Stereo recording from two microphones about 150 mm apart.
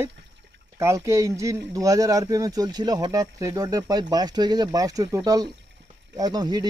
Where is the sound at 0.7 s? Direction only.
20° right (ahead or behind).